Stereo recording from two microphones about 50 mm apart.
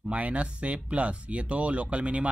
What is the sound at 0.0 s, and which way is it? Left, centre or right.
Speech, right.